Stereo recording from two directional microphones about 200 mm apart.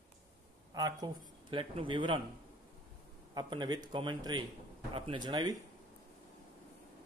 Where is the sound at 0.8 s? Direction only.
20° right (ahead or behind).